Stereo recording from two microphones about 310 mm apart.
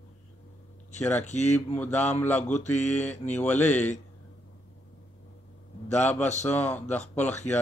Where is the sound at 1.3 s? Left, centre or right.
Left.